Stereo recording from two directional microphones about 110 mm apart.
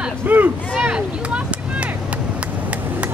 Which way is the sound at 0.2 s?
15° right (ahead or behind).